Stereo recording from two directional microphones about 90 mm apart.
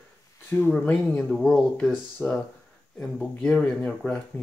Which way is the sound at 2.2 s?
20° left (ahead or behind).